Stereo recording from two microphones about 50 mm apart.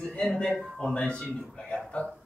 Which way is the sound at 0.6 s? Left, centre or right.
Centre.